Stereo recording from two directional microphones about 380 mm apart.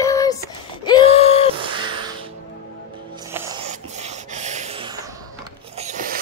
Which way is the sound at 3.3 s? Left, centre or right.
Centre.